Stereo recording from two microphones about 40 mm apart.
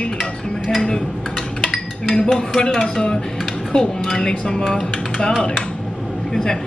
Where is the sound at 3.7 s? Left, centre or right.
Centre.